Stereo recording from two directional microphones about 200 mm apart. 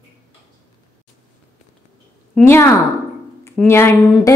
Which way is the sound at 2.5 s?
15° left (ahead or behind).